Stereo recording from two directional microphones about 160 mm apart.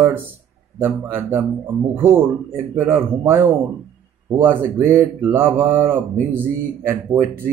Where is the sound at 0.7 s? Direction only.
15° right (ahead or behind).